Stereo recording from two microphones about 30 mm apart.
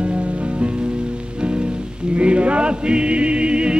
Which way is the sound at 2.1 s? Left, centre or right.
Right.